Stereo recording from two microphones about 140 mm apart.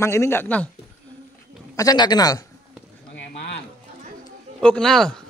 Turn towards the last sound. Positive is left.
turn(degrees=5)  # may be behind; listen again after turning